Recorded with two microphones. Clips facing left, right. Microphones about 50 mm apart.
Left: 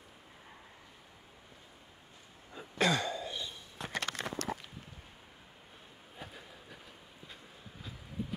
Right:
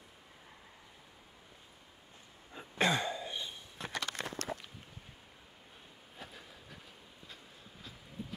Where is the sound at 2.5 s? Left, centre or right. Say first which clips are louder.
Left 1 dB; right.